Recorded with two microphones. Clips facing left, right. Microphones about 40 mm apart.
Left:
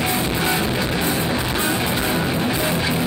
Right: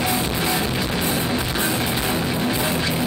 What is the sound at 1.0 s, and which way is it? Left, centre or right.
Music, left.